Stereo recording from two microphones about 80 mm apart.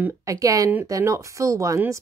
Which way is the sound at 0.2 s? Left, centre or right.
Right.